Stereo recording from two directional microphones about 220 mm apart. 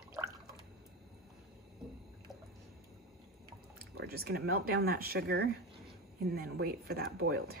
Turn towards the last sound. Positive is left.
turn(degrees=-45)  # may be behind; listen again after turning